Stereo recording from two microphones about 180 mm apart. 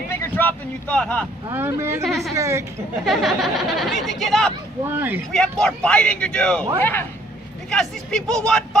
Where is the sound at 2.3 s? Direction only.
15° right (ahead or behind).